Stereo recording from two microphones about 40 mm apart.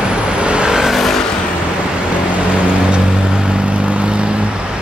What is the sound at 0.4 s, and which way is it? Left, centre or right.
Vehicle, right.